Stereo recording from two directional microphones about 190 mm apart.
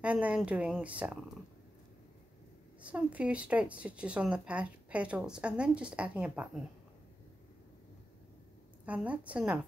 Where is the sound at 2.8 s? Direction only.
5° right (ahead or behind).